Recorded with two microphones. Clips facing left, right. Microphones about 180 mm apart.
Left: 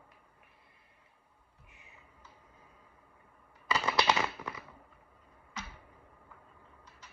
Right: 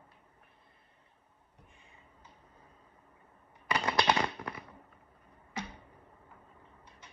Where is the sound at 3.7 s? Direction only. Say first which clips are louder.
Even; 5° left (ahead or behind).